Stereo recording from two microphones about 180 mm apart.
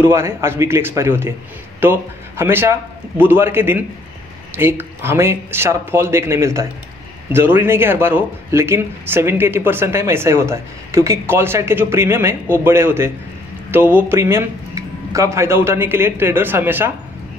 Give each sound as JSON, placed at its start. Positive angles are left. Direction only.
{"t": 0.0, "sound": "speech", "side_deg": -15}